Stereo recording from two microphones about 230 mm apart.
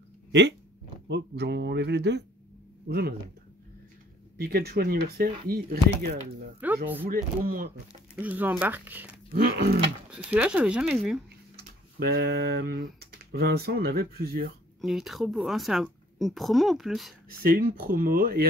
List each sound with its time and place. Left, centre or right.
0.3 s speech: right
4.4 s speech: right
6.6 s speech: centre
7.1 s speech: right
8.2 s speech: centre
9.3 s speech: right
10.1 s a woman's voice: centre
12.0 s speech: right
14.8 s a woman's voice: centre
17.4 s speech: right